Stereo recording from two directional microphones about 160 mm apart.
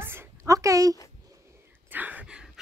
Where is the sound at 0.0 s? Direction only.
15° right (ahead or behind).